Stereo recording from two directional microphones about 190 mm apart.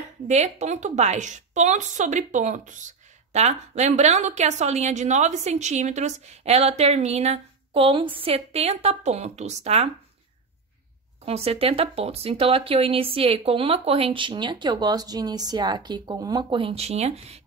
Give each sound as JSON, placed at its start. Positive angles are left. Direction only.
{"t": 0.3, "sound": "a woman's voice", "side_deg": -35}
{"t": 11.2, "sound": "speech", "side_deg": -30}